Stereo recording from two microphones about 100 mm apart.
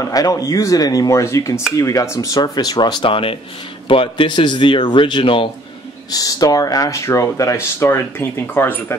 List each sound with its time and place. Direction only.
0.0 s speech: 35° left (ahead or behind); by 5.5 s 60° left (ahead or behind)
6.1 s speech: 40° left (ahead or behind); by 8.9 s 20° left (ahead or behind)